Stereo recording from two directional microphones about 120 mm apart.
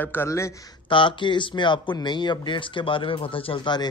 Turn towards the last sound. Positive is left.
turn(degrees=45)  # may be behind; listen again after turning